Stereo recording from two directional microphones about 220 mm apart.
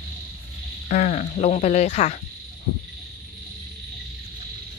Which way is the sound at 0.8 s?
35° left (ahead or behind).